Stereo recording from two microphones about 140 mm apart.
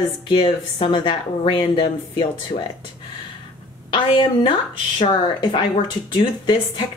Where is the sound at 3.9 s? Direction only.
35° left (ahead or behind).